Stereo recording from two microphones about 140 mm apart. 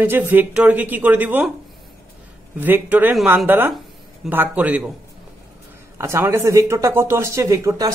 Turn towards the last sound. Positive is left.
turn(degrees=-20)  # may be behind; listen again after turning